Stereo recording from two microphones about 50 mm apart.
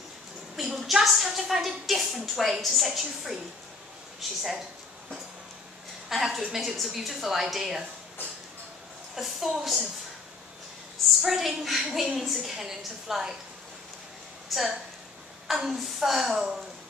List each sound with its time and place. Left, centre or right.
0.6 s a woman's voice: centre
6.0 s a woman's voice: centre
9.1 s a woman's voice: centre
11.2 s a woman's voice: centre
14.5 s a woman's voice: centre